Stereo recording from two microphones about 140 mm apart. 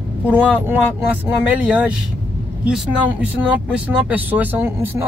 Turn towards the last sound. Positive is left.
turn(degrees=-15)  # may be behind; listen again after turning